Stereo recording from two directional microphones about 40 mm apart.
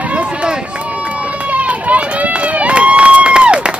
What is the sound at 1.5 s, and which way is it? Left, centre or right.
Run, right.